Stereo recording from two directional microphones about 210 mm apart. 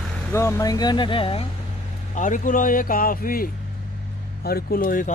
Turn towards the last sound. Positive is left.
turn(degrees=40)  # may be behind; listen again after turning